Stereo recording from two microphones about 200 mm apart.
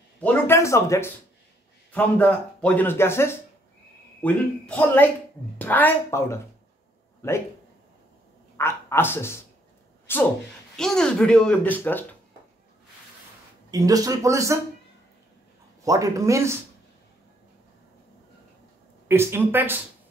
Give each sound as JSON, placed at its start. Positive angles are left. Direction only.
{"t": 0.2, "sound": "a sound", "side_deg": 10}
{"t": 1.9, "sound": "speech", "side_deg": 5}
{"t": 8.5, "sound": "a woman's voice", "side_deg": 10}
{"t": 13.7, "sound": "speech", "side_deg": -20}
{"t": 15.8, "sound": "speech", "side_deg": -15}
{"t": 19.0, "sound": "speech", "side_deg": -10}